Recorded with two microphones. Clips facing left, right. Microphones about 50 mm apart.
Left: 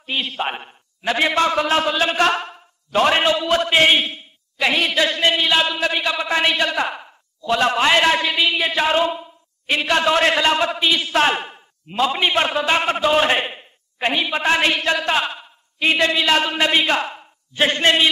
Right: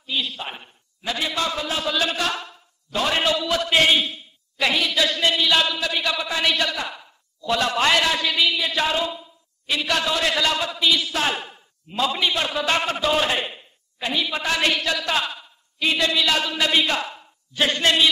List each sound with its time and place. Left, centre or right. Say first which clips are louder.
0.0 s a man's voice: left 4 dB; left
1.9 s a man's voice: left 4 dB; left
2.1 s a man's voice: left 8 dB; left
6.8 s speech: left 8 dB; left
7.4 s a man's voice: left 3 dB; left
8.9 s a sound: left 6 dB; left
9.8 s a man's voice: left 6 dB; left
12.5 s a man's voice: left 4 dB; left